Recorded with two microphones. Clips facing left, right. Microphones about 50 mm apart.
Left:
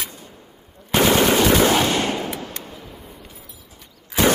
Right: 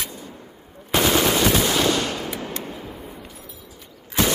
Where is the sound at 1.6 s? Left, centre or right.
Left.